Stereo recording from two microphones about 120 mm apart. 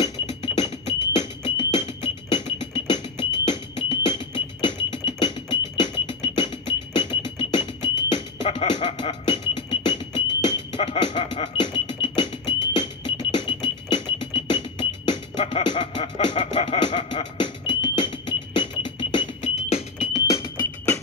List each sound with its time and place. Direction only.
0.3 s music: 60° left (ahead or behind)